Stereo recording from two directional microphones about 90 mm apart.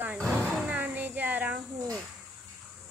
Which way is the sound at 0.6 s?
15° right (ahead or behind).